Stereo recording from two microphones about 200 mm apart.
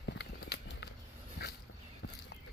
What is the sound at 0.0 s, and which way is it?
Horse, 60° left (ahead or behind).